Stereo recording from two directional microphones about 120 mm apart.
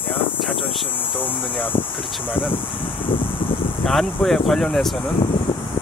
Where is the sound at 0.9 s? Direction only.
15° left (ahead or behind).